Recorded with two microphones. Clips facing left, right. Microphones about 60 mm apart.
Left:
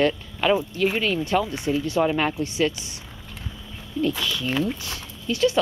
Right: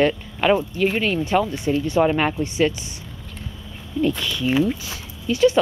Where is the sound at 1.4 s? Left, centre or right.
Centre.